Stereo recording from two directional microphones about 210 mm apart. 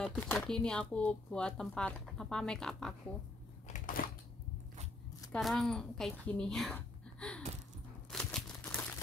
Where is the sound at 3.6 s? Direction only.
40° left (ahead or behind).